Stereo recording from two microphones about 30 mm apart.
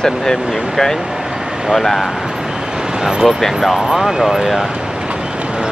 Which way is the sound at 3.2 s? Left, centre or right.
Centre.